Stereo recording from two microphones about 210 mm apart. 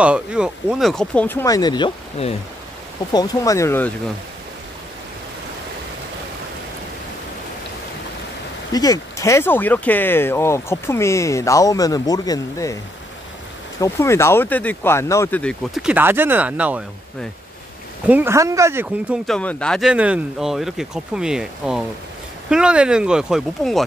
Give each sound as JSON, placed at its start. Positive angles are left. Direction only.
{"t": 0.0, "sound": "speech", "side_deg": -5}
{"t": 8.7, "sound": "speech", "side_deg": 15}
{"t": 13.7, "sound": "speech", "side_deg": 15}
{"t": 19.2, "sound": "speech", "side_deg": 5}